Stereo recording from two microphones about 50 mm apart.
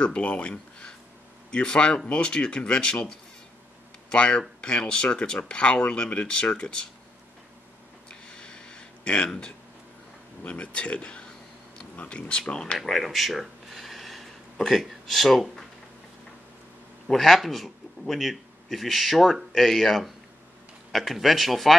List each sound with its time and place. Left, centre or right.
0.0 s speech: left
8.3 s a sound: centre
10.4 s speech: left
12.7 s speech: centre
17.1 s speech: centre